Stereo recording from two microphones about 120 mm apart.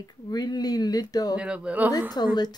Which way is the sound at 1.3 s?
10° right (ahead or behind).